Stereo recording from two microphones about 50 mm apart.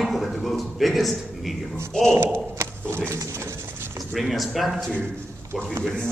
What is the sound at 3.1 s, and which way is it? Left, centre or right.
Speech, right.